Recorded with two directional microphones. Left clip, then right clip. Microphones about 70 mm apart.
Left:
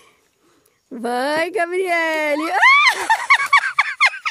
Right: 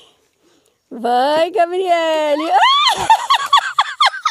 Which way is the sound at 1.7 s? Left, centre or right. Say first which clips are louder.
Right 4 dB; centre.